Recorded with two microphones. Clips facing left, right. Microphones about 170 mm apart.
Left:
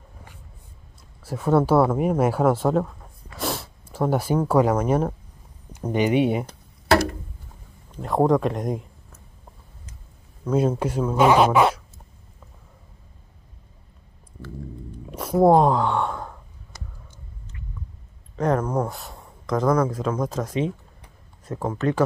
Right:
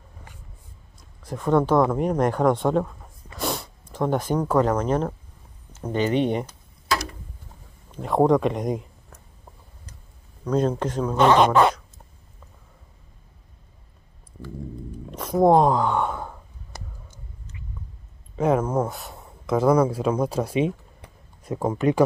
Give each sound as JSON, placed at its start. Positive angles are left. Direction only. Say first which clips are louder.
{"t": 1.2, "sound": "speech", "louder": "left 1 dB", "side_deg": 5}
{"t": 6.9, "sound": "a sound", "louder": "left 8 dB", "side_deg": 55}
{"t": 7.9, "sound": "speech", "louder": "right 1 dB", "side_deg": 0}
{"t": 10.4, "sound": "speech", "louder": "left 1 dB", "side_deg": 5}
{"t": 15.0, "sound": "a sound", "louder": "left 1 dB", "side_deg": 10}
{"t": 18.3, "sound": "speech", "louder": "right 1 dB", "side_deg": -10}